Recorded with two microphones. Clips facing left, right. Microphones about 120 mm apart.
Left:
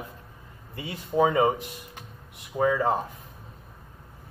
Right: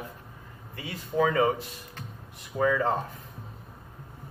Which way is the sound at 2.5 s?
15° left (ahead or behind).